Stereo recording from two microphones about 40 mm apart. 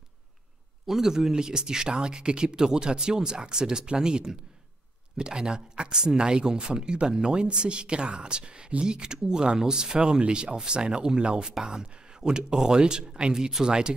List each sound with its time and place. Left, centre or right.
0.8 s speech: centre